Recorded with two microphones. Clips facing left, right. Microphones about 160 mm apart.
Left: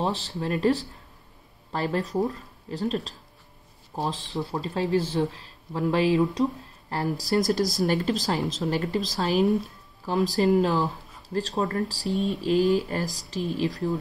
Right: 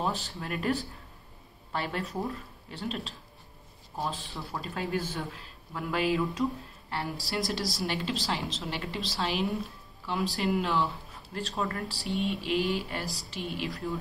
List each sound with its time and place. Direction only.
0.0 s speech: 35° left (ahead or behind)